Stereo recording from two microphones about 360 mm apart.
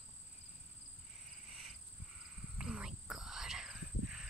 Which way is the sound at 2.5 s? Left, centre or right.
Centre.